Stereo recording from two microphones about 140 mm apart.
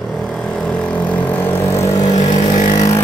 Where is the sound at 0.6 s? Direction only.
10° left (ahead or behind).